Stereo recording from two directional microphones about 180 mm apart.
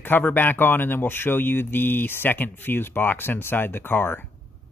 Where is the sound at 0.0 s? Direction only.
10° left (ahead or behind).